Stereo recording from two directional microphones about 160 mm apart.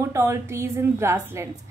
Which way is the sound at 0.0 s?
15° right (ahead or behind).